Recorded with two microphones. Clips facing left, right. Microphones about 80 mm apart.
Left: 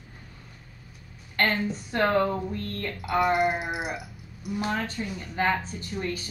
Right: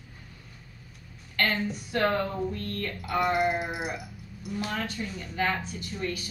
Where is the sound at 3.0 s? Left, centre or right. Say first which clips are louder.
Left 3 dB; centre.